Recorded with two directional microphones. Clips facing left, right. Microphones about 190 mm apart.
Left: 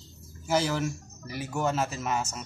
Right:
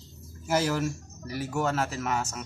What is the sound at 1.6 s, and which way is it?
Speech, 20° left (ahead or behind).